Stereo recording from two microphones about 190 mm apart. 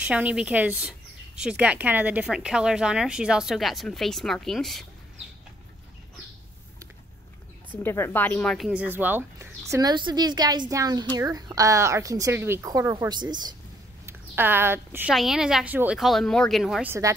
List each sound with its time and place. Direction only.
0.0 s speech: 5° right (ahead or behind)
7.7 s speech: 10° left (ahead or behind); by 13.6 s 20° right (ahead or behind)
14.0 s speech: 10° right (ahead or behind)